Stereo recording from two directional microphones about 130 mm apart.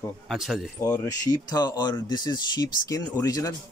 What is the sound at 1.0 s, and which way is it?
Speech, 30° left (ahead or behind).